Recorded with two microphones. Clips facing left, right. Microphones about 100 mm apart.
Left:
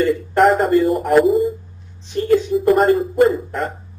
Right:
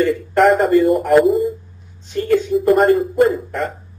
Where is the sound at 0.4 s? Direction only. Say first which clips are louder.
Right 1 dB; centre (ahead or behind).